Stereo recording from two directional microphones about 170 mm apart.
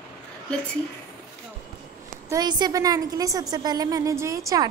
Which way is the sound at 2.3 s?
20° right (ahead or behind).